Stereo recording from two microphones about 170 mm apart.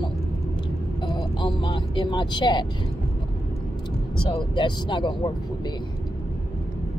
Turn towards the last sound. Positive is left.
turn(degrees=25)  # may be behind; listen again after turning